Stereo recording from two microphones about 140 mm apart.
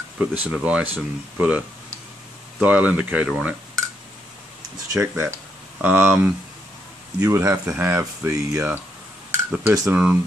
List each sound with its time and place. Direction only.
0.2 s speech: 10° right (ahead or behind)
2.6 s speech: 10° right (ahead or behind)
4.9 s speech: 20° right (ahead or behind)